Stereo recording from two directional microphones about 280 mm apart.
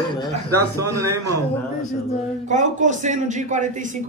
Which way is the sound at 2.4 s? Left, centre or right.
Right.